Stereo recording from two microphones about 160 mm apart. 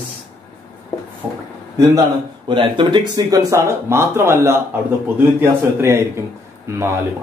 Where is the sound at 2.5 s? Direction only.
30° right (ahead or behind).